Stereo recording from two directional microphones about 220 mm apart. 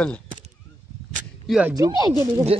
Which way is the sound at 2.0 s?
15° right (ahead or behind).